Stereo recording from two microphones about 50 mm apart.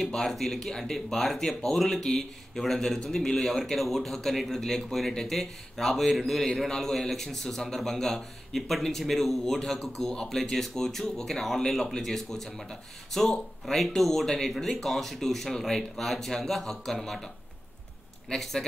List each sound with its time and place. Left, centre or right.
0.0 s a man's voice: centre
18.3 s a man's voice: centre